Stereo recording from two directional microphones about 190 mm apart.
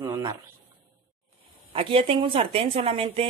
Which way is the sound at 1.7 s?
30° right (ahead or behind).